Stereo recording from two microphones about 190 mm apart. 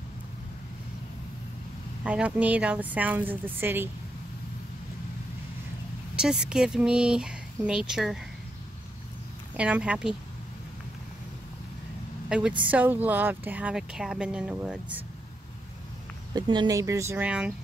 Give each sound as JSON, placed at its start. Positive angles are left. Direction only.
{"t": 2.0, "sound": "speech", "side_deg": -5}
{"t": 6.1, "sound": "speech", "side_deg": -5}
{"t": 9.6, "sound": "speech", "side_deg": -5}
{"t": 12.3, "sound": "speech", "side_deg": -5}
{"t": 16.3, "sound": "speech", "side_deg": -25}